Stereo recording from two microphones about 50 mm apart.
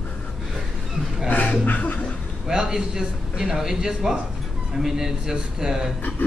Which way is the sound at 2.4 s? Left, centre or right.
Centre.